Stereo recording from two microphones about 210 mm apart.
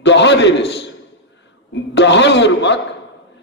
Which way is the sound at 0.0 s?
55° left (ahead or behind).